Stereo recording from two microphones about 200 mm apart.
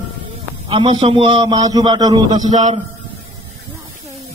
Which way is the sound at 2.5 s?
35° right (ahead or behind).